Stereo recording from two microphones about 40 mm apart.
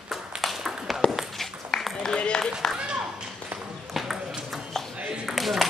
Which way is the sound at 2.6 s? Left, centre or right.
Centre.